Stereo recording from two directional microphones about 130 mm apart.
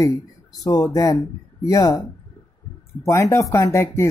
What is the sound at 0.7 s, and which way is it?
Speech, 25° left (ahead or behind).